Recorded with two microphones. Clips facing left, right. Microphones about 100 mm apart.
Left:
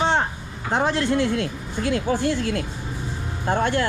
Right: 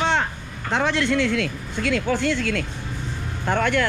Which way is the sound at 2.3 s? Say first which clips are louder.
Even; 70° right (ahead or behind).